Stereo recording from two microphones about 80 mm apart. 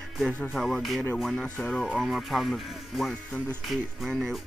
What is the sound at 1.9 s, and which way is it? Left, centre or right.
Speech, centre.